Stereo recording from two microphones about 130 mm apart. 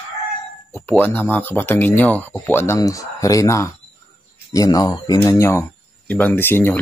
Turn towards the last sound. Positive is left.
turn(degrees=15)  # may be behind; listen again after turning